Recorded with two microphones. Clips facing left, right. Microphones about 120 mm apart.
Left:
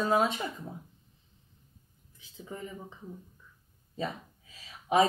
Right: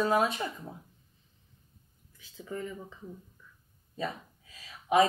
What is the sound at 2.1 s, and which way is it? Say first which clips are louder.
Speech: right 4 dB; 20° left (ahead or behind).